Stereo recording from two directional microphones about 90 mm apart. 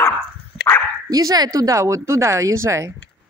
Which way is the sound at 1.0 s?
45° right (ahead or behind).